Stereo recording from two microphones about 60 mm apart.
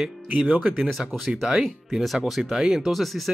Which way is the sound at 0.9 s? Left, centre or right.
Centre.